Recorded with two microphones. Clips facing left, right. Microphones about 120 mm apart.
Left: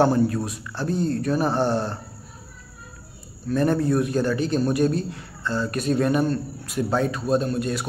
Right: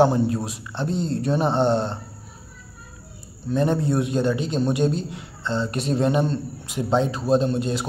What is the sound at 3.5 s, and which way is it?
A man's voice, 20° right (ahead or behind).